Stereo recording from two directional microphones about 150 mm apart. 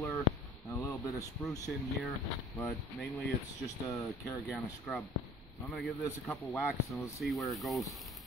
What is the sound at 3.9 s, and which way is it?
Speech, 20° left (ahead or behind).